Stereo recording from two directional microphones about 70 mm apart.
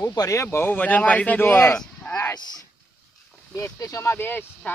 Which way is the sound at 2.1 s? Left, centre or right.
Left.